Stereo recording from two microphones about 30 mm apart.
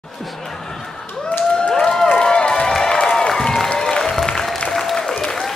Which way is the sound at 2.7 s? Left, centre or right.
Centre.